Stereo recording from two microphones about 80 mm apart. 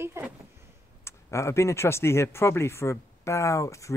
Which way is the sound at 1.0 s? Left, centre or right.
Left.